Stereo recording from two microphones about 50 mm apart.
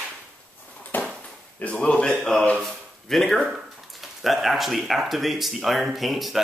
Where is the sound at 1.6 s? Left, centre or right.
Left.